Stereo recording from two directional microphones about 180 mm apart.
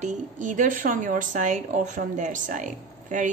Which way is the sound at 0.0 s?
45° right (ahead or behind).